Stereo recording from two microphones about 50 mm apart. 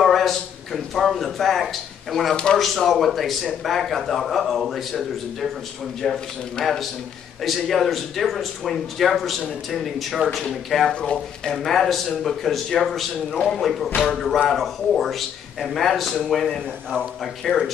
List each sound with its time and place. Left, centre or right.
0.0 s a sound: centre
0.9 s a man's voice: centre
10.9 s speech: centre
11.5 s speech: centre